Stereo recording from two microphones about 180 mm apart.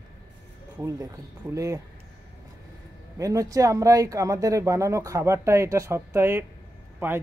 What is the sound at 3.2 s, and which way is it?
Speech, 20° right (ahead or behind).